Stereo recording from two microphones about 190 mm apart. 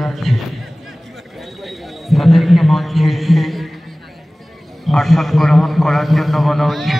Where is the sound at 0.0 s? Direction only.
Centre (ahead or behind).